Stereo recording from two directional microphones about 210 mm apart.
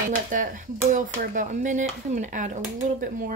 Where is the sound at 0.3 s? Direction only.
40° right (ahead or behind).